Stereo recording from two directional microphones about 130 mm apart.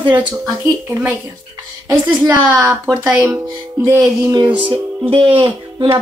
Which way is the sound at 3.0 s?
10° right (ahead or behind).